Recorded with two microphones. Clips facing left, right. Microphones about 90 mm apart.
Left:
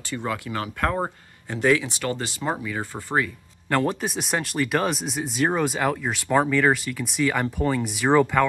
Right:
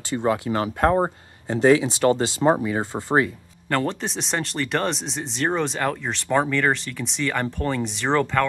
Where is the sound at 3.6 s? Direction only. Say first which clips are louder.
Left 1 dB; 5° left (ahead or behind).